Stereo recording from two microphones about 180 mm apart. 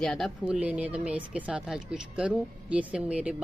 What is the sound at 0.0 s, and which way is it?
Speech, centre (ahead or behind).